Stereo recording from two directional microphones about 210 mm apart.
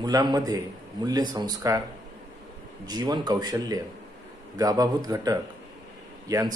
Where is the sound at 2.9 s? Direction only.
20° right (ahead or behind).